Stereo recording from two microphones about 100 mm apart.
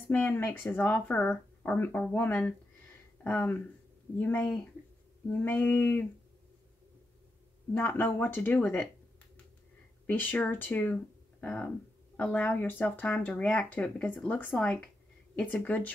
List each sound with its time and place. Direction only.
0.1 s speech: 20° left (ahead or behind)
7.7 s speech: 20° left (ahead or behind)
10.0 s speech: 15° left (ahead or behind)